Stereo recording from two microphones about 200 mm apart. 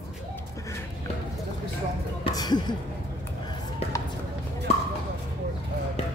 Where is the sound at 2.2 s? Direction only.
20° left (ahead or behind).